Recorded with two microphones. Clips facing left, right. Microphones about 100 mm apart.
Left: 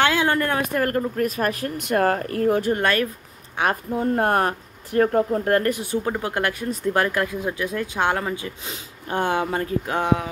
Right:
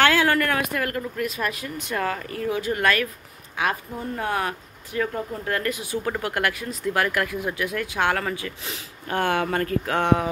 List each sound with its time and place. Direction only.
0.0 s a woman's voice: 20° left (ahead or behind); by 2.6 s 55° left (ahead or behind)
2.7 s speech: 30° left (ahead or behind)
3.9 s a woman's voice: 55° left (ahead or behind)
6.0 s speech: 25° left (ahead or behind)